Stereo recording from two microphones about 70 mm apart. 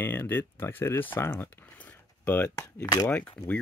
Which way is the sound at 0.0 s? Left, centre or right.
Left.